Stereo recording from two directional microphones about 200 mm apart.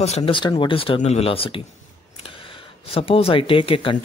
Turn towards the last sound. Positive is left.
turn(degrees=25)  # may be behind; listen again after turning